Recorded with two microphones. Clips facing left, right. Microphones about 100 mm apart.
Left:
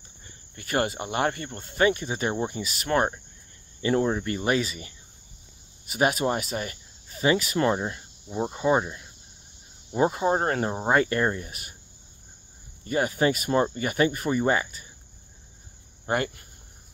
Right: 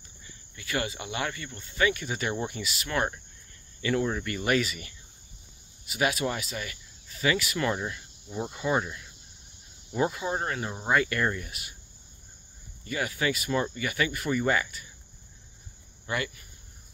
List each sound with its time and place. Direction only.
0.2 s speech: 45° left (ahead or behind); by 2.6 s 25° left (ahead or behind)
2.6 s speech: 40° left (ahead or behind)
3.8 s speech: 30° left (ahead or behind)
5.9 s speech: 40° left (ahead or behind)
9.9 s speech: 35° left (ahead or behind)
12.8 s speech: 35° left (ahead or behind)
16.1 s speech: 45° left (ahead or behind)